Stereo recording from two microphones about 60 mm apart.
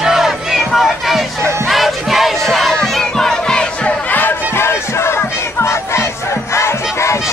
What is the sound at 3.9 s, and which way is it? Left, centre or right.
Battle cry, left.